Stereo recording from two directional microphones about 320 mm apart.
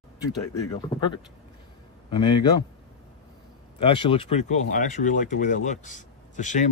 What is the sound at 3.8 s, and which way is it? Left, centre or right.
Speech, centre.